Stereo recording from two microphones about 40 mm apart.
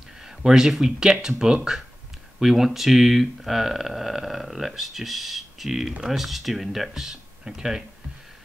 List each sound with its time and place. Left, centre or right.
0.2 s speech: centre
2.4 s speech: centre